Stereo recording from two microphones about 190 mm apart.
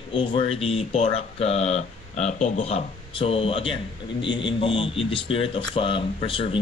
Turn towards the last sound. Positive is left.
turn(degrees=30)  # may be behind; listen again after turning